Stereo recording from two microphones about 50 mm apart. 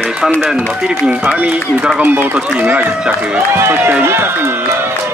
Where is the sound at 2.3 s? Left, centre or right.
Right.